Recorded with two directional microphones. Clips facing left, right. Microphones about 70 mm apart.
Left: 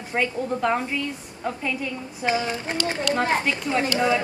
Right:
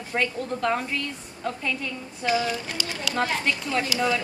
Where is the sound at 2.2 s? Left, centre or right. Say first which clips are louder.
Even; left.